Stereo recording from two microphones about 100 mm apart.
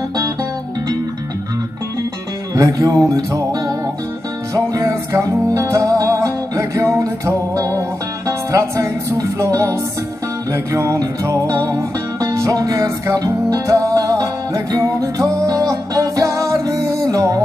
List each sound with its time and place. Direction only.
2.5 s music: 35° right (ahead or behind)